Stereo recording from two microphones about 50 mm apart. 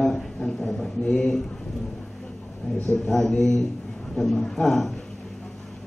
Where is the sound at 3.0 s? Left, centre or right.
Centre.